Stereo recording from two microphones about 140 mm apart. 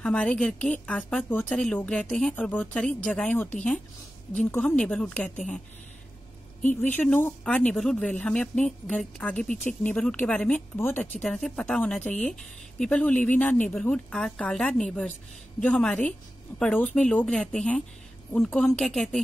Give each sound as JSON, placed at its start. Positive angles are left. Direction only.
{"t": 0.0, "sound": "speech", "side_deg": 5}
{"t": 6.8, "sound": "a woman's voice", "side_deg": 15}